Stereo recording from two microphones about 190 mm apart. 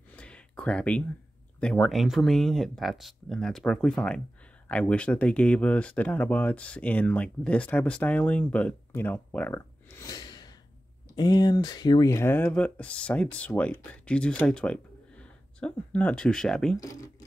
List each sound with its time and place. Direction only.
0.1 s a sound: 5° left (ahead or behind)
1.6 s speech: centre (ahead or behind)
16.7 s speech: 15° left (ahead or behind)